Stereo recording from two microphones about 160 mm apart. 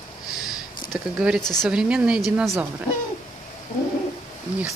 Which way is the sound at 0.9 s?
5° right (ahead or behind).